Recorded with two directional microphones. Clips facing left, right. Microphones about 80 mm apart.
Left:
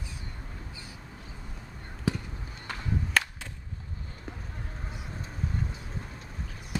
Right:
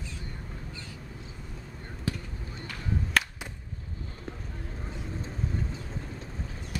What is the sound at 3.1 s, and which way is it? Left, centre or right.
Whip, centre.